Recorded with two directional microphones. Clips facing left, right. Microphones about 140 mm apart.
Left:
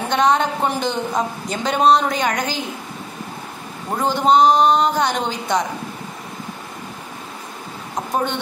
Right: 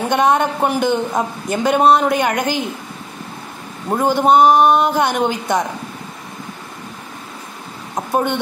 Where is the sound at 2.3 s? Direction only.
55° right (ahead or behind).